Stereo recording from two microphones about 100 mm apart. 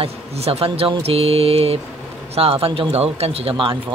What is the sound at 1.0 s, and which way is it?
Mantra, 80° right.